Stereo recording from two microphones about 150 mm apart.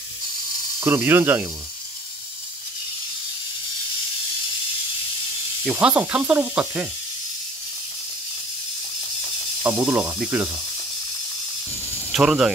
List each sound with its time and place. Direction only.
0.8 s speech: 15° right (ahead or behind)
5.6 s speech: 10° right (ahead or behind)
9.6 s speech: 10° right (ahead or behind)
12.1 s speech: 5° right (ahead or behind)